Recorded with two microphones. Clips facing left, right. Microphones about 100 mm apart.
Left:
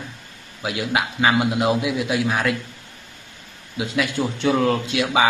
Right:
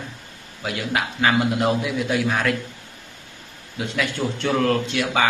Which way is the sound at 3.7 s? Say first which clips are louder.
Left 3 dB; 5° left (ahead or behind).